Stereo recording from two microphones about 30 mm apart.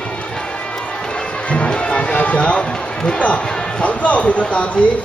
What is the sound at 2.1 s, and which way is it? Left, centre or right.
Speech, left.